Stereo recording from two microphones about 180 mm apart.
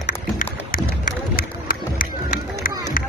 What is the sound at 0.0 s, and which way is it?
Music, 50° left (ahead or behind).